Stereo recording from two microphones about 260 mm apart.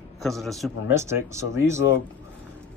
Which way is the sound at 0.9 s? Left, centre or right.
Centre.